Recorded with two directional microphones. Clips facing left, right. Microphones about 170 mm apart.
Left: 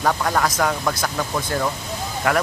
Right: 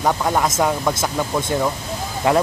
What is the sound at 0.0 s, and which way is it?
Speech, 20° right (ahead or behind).